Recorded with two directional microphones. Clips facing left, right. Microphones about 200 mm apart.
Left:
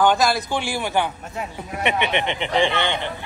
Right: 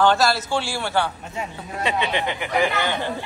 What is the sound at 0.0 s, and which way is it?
A man's voice, 15° left (ahead or behind).